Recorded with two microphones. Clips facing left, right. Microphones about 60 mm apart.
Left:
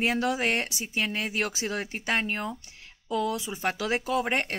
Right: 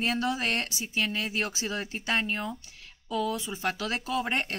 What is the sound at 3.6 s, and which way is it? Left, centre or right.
Speech, left.